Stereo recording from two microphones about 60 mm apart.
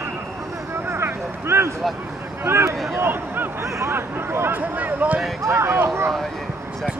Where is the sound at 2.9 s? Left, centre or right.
Right.